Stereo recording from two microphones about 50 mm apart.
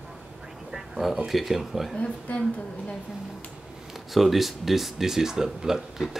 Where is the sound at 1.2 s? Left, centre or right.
Centre.